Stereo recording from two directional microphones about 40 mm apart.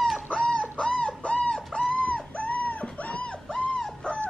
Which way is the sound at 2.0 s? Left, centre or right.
Left.